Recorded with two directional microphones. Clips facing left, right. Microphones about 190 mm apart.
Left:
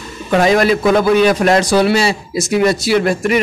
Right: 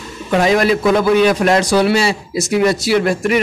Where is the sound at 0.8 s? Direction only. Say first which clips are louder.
Left 1 dB; 40° left (ahead or behind).